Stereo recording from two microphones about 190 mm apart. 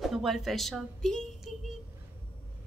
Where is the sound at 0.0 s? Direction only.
Centre (ahead or behind).